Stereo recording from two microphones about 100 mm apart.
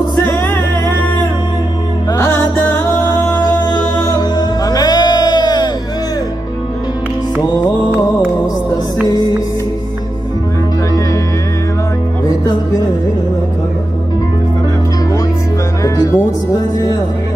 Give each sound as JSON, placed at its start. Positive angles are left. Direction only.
{"t": 0.2, "sound": "music", "side_deg": 25}
{"t": 2.1, "sound": "music", "side_deg": 25}
{"t": 9.0, "sound": "music", "side_deg": 40}
{"t": 15.8, "sound": "music", "side_deg": 40}